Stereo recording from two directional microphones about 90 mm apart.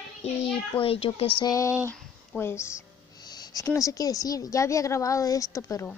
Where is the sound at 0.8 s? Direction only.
90° left.